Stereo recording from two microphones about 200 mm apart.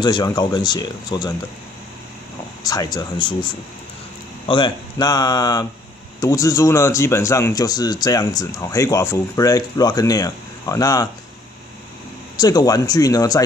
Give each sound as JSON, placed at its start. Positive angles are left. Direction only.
{"t": 0.0, "sound": "speech", "side_deg": 20}
{"t": 2.6, "sound": "a man's voice", "side_deg": 20}
{"t": 12.4, "sound": "a man's voice", "side_deg": 20}